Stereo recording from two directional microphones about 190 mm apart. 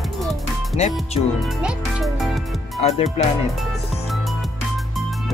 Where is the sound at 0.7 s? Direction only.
35° left (ahead or behind).